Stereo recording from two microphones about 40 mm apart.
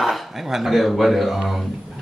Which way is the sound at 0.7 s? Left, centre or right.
Centre.